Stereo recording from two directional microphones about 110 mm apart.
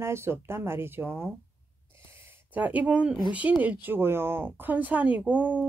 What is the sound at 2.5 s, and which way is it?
Speech, 15° right (ahead or behind).